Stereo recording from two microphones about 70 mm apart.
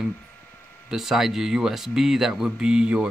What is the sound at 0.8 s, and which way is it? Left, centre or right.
Speech, centre.